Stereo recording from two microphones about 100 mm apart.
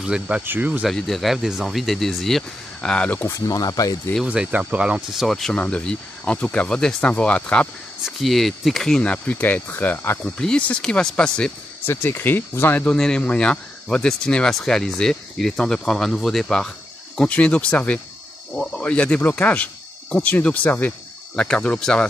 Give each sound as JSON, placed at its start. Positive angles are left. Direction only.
{"t": 0.0, "sound": "speech", "side_deg": -10}
{"t": 0.4, "sound": "speech", "side_deg": -20}
{"t": 0.8, "sound": "speech", "side_deg": 0}
{"t": 3.3, "sound": "speech", "side_deg": 35}
{"t": 4.2, "sound": "speech", "side_deg": -10}
{"t": 8.0, "sound": "speech", "side_deg": 0}
{"t": 10.2, "sound": "speech", "side_deg": 10}
{"t": 11.8, "sound": "speech", "side_deg": 20}
{"t": 12.8, "sound": "speech", "side_deg": 5}